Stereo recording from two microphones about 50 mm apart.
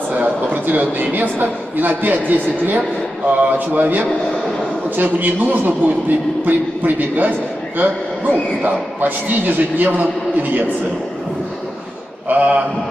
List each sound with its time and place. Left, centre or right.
0.1 s a man's voice: right
12.3 s a man's voice: right